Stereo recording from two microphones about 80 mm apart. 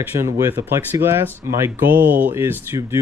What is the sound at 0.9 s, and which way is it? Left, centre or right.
Speech, right.